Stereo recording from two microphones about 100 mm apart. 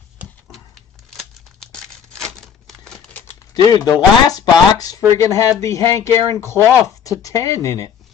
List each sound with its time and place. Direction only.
1.1 s scissors: 5° left (ahead or behind)
2.2 s typewriter: 5° left (ahead or behind)
3.6 s speech: 40° left (ahead or behind)